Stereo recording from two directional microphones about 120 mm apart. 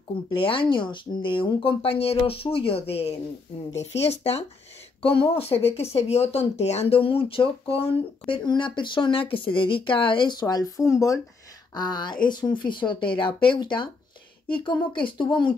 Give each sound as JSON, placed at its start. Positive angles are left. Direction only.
{"t": 0.3, "sound": "speech", "side_deg": 45}
{"t": 10.4, "sound": "speech", "side_deg": 30}